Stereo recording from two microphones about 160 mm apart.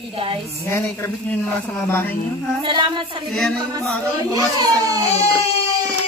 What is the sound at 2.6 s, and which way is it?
Speech, 30° right (ahead or behind).